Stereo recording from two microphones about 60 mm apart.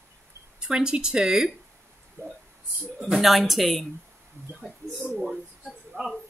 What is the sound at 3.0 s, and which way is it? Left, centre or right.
Speech, centre.